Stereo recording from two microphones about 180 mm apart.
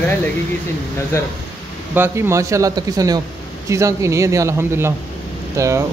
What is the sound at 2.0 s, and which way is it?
Speech, 15° right (ahead or behind).